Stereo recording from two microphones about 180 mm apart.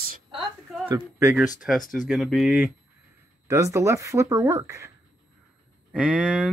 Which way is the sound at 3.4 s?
15° right (ahead or behind).